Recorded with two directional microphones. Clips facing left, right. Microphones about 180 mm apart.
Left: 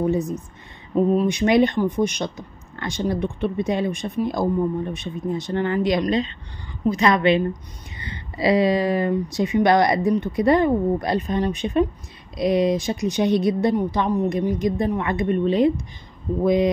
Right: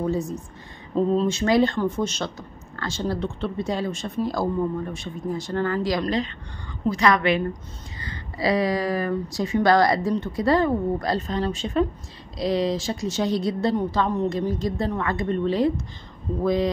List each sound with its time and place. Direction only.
0.0 s a woman's voice: 20° left (ahead or behind)